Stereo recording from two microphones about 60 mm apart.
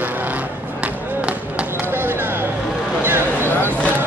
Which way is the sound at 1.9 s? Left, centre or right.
Right.